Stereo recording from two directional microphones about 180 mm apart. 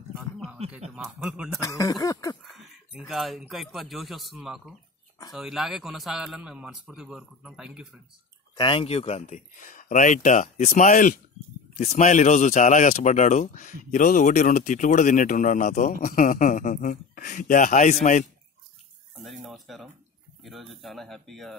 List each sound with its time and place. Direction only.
1.0 s a man's voice: 10° right (ahead or behind)
1.6 s speech: 20° left (ahead or behind)
2.5 s a man's voice: centre (ahead or behind)
8.5 s speech: 30° left (ahead or behind)
19.2 s a man's voice: centre (ahead or behind)